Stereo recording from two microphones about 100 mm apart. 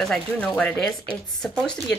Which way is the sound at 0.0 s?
5° left (ahead or behind).